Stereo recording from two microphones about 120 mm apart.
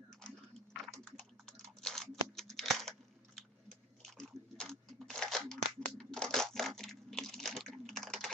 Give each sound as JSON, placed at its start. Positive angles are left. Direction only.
{"t": 1.4, "sound": "typing", "side_deg": 5}
{"t": 4.0, "sound": "crunch", "side_deg": 5}
{"t": 5.5, "sound": "crushing", "side_deg": 5}